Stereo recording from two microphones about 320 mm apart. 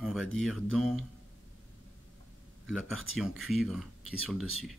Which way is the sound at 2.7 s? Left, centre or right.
Centre.